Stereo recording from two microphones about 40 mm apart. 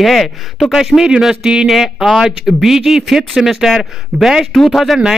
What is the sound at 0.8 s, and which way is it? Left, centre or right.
Speech, centre.